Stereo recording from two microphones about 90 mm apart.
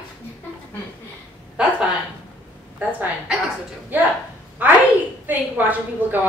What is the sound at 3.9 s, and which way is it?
Speech, 20° right (ahead or behind).